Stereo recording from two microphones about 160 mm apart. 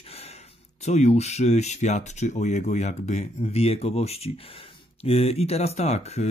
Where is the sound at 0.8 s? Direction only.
45° left (ahead or behind).